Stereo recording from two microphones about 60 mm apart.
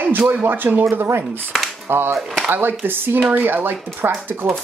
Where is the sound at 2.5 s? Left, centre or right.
Right.